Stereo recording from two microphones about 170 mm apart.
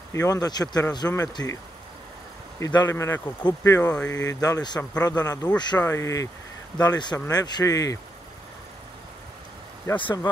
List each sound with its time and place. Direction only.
0.1 s a man's voice: 20° left (ahead or behind)
2.6 s speech: 20° left (ahead or behind)
4.1 s a man's voice: 20° left (ahead or behind)
9.9 s a man's voice: 30° left (ahead or behind)